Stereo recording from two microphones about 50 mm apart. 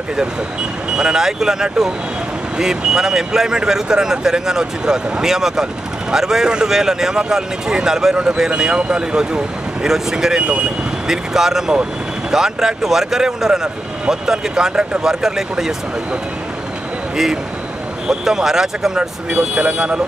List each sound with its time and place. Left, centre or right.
0.9 s speech: centre
18.0 s speech: centre
19.5 s speech: right